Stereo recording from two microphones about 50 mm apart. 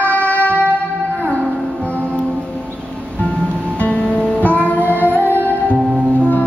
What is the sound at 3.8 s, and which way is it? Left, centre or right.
Music, left.